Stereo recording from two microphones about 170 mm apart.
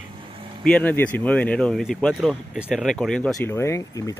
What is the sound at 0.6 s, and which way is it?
Speech, 10° left (ahead or behind).